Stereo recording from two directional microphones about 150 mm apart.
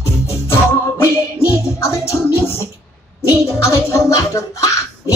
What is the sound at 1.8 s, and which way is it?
Music, 20° left (ahead or behind).